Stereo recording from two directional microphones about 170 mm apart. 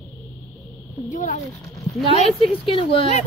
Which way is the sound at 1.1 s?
45° left (ahead or behind).